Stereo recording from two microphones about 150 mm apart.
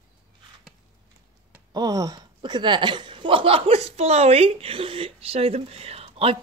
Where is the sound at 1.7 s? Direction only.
25° right (ahead or behind).